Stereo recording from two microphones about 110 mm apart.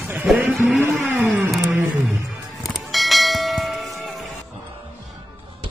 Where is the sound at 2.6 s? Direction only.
Centre (ahead or behind).